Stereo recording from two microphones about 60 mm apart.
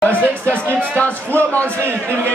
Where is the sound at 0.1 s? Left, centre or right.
Right.